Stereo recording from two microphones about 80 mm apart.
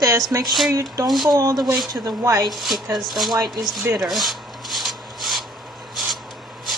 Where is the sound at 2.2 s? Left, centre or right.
Right.